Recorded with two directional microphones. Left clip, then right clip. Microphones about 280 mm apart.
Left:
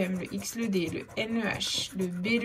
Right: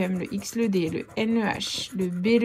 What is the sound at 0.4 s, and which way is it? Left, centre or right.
Speech, centre.